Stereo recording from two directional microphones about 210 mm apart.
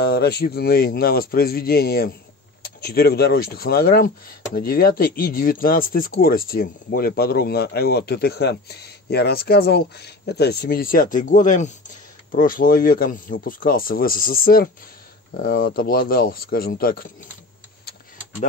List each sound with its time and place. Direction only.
0.0 s speech: 50° left (ahead or behind)